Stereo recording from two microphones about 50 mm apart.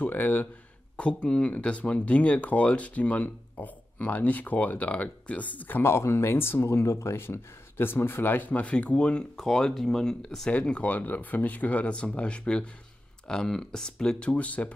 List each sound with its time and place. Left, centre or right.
0.0 s speech: left
0.9 s speech: left
5.8 s speech: left
9.4 s speech: centre
10.5 s speech: left; by 14.3 s centre
14.3 s speech: left